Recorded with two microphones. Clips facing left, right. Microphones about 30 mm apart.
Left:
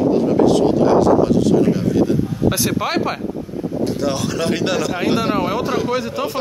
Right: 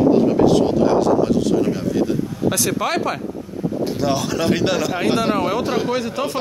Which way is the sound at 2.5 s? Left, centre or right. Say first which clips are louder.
Even; centre.